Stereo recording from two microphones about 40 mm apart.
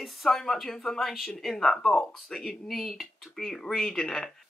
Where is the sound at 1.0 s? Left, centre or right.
Centre.